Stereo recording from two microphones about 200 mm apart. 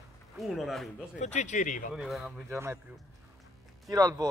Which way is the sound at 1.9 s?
Centre (ahead or behind).